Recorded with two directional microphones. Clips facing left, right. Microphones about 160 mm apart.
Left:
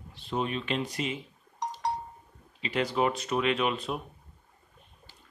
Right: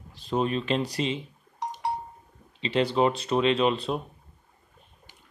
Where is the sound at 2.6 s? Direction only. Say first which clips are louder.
Right 4 dB; 30° right (ahead or behind).